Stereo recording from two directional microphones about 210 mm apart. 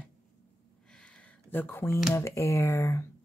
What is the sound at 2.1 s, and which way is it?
Speech, 15° left (ahead or behind).